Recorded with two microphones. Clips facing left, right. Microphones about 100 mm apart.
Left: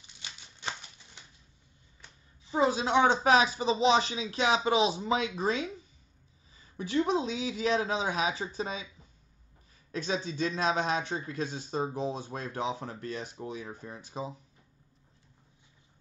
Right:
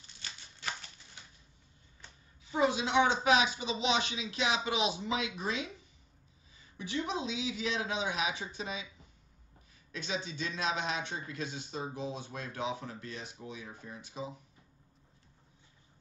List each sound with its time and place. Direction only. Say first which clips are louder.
0.2 s a sound: left 3 dB; 15° left (ahead or behind)
2.5 s speech: left 3 dB; 35° left (ahead or behind)
6.8 s speech: left 7 dB; 45° left (ahead or behind)
9.9 s speech: left 6 dB; 40° left (ahead or behind)